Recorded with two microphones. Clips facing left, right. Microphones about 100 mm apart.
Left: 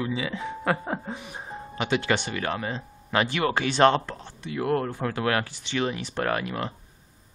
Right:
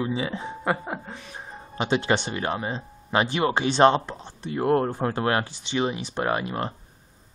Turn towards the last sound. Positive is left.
turn(degrees=-30)  # may be behind; listen again after turning